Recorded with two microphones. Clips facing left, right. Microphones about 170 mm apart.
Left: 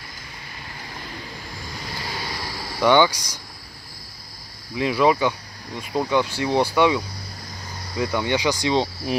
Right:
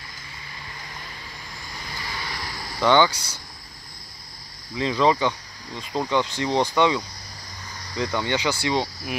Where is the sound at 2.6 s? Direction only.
10° left (ahead or behind).